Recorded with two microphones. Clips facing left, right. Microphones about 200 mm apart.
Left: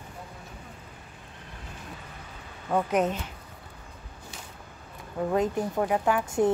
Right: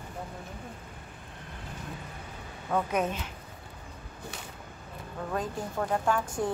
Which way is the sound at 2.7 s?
20° left (ahead or behind).